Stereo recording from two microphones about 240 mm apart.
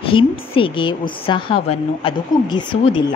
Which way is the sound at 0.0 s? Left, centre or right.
Left.